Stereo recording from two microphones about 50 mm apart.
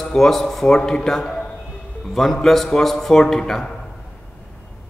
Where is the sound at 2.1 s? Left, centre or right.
Centre.